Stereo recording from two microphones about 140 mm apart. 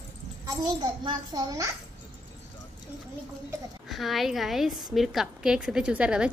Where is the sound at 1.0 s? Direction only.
25° right (ahead or behind).